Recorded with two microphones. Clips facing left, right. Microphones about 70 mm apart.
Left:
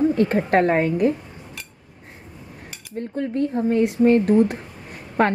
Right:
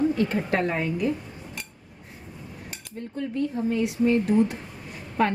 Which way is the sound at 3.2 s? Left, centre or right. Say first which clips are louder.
Left 4 dB; left.